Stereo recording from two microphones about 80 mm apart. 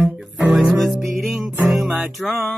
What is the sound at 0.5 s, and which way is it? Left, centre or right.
Music, centre.